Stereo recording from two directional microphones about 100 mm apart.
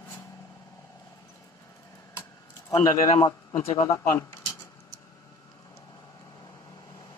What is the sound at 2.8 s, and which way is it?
A man's voice, 30° left (ahead or behind).